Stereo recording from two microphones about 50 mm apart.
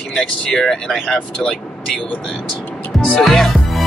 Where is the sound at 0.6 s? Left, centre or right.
Centre.